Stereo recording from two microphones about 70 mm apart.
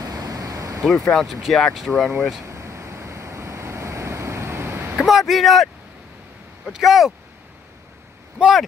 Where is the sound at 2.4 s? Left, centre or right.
Right.